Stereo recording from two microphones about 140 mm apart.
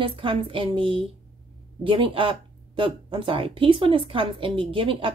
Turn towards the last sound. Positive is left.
turn(degrees=-40)  # may be behind; listen again after turning